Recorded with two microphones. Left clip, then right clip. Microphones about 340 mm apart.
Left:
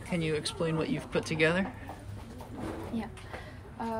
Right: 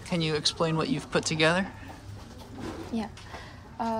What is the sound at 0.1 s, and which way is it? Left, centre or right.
Speech, centre.